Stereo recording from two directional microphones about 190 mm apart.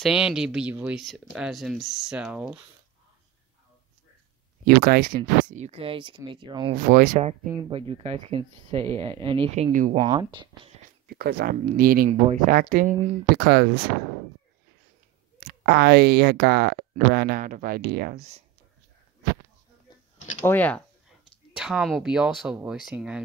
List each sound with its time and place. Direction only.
0.0 s speech: 5° right (ahead or behind)
4.6 s speech: 55° right (ahead or behind); by 6.7 s 25° right (ahead or behind)
6.7 s speech: 50° right (ahead or behind)
7.7 s speech: 30° right (ahead or behind)
9.7 s speech: 45° right (ahead or behind)
9.9 s speech: 25° right (ahead or behind)
11.1 s speech: 55° right (ahead or behind)
15.6 s speech: 60° right (ahead or behind); by 18.4 s 40° right (ahead or behind)
20.4 s speech: 10° left (ahead or behind)
21.5 s speech: 5° right (ahead or behind)